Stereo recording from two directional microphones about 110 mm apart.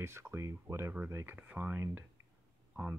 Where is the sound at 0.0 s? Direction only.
25° right (ahead or behind).